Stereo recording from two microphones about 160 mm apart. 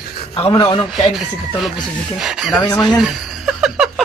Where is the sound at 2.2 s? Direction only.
Centre (ahead or behind).